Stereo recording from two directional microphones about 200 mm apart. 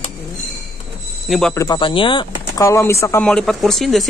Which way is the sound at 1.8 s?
25° left (ahead or behind).